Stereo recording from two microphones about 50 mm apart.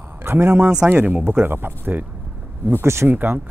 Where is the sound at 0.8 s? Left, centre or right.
Right.